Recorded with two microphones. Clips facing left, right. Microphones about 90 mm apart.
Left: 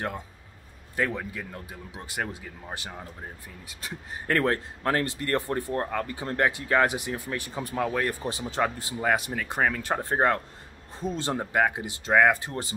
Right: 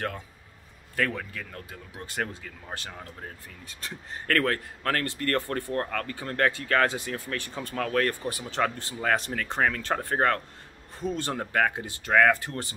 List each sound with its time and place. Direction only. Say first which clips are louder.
0.9 s speech: left 1 dB; 20° left (ahead or behind)